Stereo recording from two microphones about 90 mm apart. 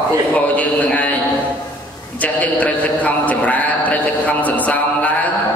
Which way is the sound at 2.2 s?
15° left (ahead or behind).